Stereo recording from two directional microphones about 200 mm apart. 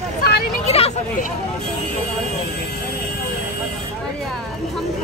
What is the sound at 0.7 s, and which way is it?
Speech, 30° left (ahead or behind).